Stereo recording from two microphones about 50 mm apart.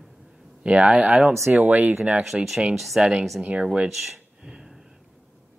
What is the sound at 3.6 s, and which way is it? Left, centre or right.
Speech, right.